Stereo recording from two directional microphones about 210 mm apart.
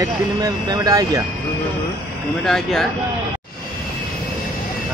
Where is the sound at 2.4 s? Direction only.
Centre (ahead or behind).